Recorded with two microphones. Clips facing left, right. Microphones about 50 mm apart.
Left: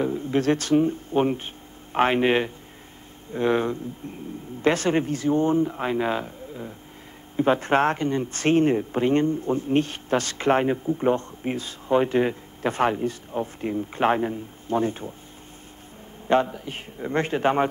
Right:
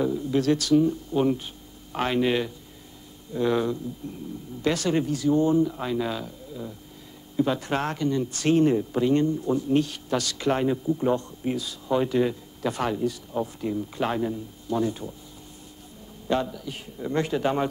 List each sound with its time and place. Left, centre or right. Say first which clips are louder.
0.0 s speech: left 1 dB; left
16.3 s speech: left 5 dB; left